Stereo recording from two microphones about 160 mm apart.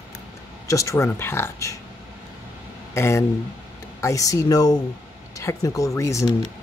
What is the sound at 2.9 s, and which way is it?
Speech, 15° left (ahead or behind).